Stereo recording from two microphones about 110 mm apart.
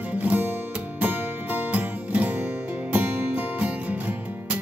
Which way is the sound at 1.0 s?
15° right (ahead or behind).